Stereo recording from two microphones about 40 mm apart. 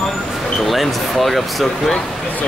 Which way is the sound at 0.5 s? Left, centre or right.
Centre.